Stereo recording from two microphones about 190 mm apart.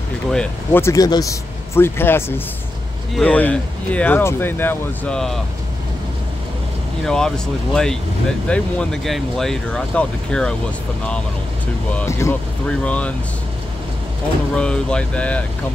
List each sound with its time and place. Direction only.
0.3 s speech: 10° left (ahead or behind)
7.1 s speech: 5° left (ahead or behind)
11.9 s speech: 10° left (ahead or behind)
14.5 s speech: 5° left (ahead or behind)